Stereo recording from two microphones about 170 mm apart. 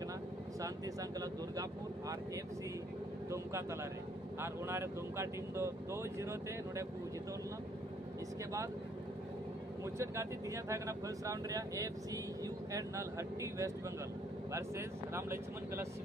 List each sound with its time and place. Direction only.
1.2 s speech: 20° right (ahead or behind)
4.4 s speech: 15° right (ahead or behind)
9.9 s speech: 15° right (ahead or behind)